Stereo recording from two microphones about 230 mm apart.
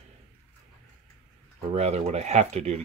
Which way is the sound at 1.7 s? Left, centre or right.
Right.